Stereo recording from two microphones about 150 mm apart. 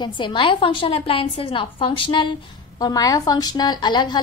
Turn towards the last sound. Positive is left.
turn(degrees=30)  # may be behind; listen again after turning